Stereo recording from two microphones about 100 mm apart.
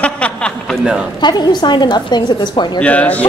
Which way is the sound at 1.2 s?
45° left (ahead or behind).